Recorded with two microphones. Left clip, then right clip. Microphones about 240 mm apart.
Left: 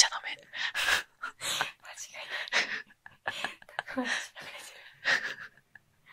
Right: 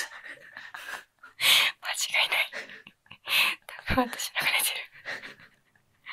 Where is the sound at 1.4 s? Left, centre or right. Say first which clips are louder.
Right 13 dB; right.